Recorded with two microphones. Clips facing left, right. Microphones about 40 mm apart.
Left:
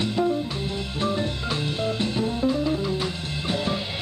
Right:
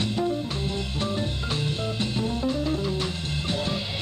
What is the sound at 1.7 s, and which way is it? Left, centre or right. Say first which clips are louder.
Music: left 3 dB; left.